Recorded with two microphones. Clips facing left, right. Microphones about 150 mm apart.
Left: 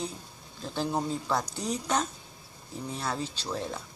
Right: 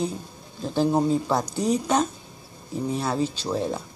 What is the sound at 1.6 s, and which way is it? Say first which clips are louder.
A woman's voice: right 8 dB; 10° right (ahead or behind).